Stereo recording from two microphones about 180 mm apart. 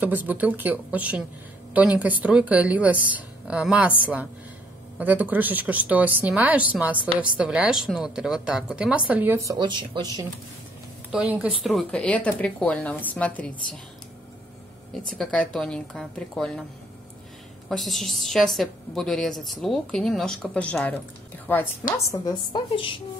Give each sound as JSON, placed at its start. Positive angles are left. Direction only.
{"t": 0.0, "sound": "speech", "side_deg": -10}
{"t": 4.9, "sound": "a woman's voice", "side_deg": -10}
{"t": 11.1, "sound": "speech", "side_deg": -5}
{"t": 15.0, "sound": "a woman's voice", "side_deg": 5}
{"t": 17.6, "sound": "a woman's voice", "side_deg": 0}
{"t": 21.9, "sound": "speech", "side_deg": 20}